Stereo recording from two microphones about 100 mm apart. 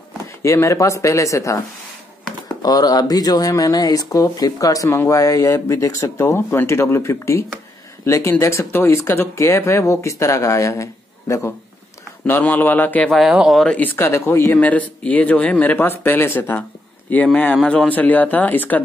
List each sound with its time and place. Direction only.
0.4 s speech: 30° left (ahead or behind)
2.6 s speech: 40° left (ahead or behind)
12.3 s speech: 20° left (ahead or behind)
13.1 s speech: 5° right (ahead or behind)
13.7 s speech: 15° left (ahead or behind)
14.6 s speech: 15° left (ahead or behind)